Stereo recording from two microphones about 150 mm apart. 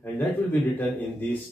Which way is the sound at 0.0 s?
10° left (ahead or behind).